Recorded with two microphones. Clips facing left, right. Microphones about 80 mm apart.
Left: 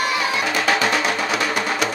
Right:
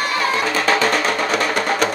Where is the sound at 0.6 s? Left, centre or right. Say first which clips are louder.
Right 1 dB; right.